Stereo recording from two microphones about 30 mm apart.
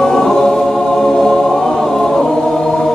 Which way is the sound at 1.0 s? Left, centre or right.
Centre.